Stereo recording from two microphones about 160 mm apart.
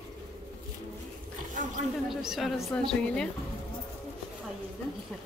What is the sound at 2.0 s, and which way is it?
A woman's voice, centre (ahead or behind).